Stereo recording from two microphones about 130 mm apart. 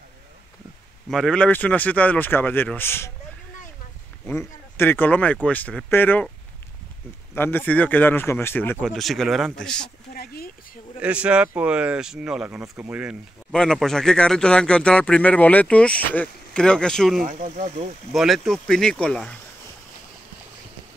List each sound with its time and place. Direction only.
1.1 s speech: 5° left (ahead or behind)
4.3 s speech: 15° left (ahead or behind)
7.3 s speech: 15° left (ahead or behind)
8.8 s speech: centre (ahead or behind)
11.0 s speech: 10° right (ahead or behind)
13.5 s speech: 5° left (ahead or behind)
17.3 s speech: 70° right (ahead or behind)
18.1 s speech: centre (ahead or behind)